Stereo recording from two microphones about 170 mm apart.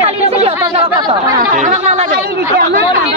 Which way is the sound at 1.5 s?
45° right (ahead or behind).